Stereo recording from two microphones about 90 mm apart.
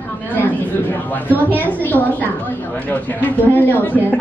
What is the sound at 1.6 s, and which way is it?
Speech, 20° left (ahead or behind).